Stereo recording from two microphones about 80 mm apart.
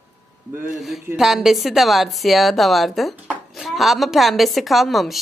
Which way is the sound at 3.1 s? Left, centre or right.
Right.